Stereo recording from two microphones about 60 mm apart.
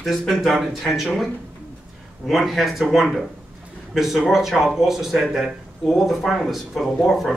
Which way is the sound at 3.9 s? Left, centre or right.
Centre.